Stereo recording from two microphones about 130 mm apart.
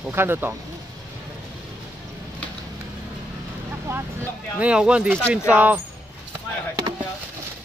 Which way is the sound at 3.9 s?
20° right (ahead or behind).